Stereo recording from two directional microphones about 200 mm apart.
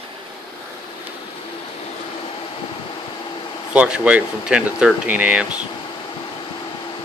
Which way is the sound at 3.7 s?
5° right (ahead or behind).